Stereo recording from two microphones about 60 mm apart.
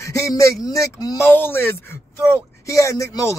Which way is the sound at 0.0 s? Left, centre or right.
Left.